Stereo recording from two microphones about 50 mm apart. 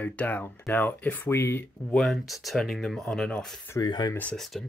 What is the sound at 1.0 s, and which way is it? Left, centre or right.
Speech, left.